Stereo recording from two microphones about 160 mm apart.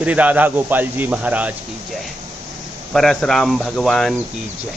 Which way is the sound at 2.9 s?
5° left (ahead or behind).